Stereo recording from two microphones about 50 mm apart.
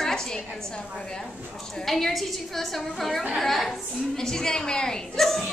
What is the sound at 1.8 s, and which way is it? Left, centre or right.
A woman's voice, centre.